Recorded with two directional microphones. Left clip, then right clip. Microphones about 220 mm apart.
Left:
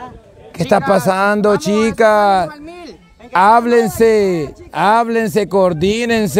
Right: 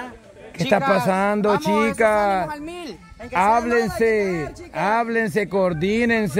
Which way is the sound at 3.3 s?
35° left (ahead or behind).